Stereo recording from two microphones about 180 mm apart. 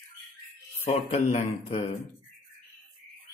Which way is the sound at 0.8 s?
35° left (ahead or behind).